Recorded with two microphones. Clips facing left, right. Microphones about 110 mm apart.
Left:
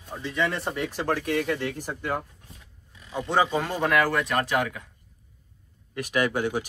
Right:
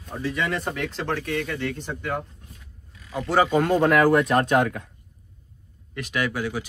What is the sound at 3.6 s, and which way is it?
Speech, centre (ahead or behind).